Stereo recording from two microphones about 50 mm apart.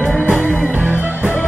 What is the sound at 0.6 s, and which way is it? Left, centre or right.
Music, right.